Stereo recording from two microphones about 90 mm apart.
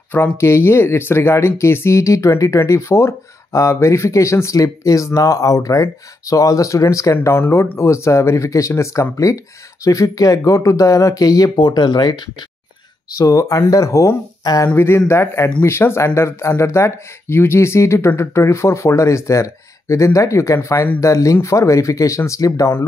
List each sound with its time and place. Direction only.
0.1 s speech: 30° left (ahead or behind); by 12.4 s 55° left (ahead or behind)
13.2 s speech: 40° left (ahead or behind)
14.8 s speech: 30° left (ahead or behind)